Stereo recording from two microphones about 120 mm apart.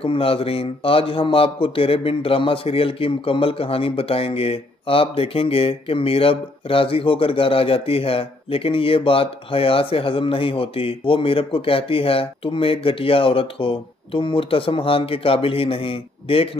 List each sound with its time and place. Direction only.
0.0 s a man's voice: 50° left (ahead or behind)